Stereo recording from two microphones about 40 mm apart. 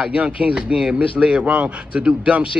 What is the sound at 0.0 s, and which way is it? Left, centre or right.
A man's voice, right.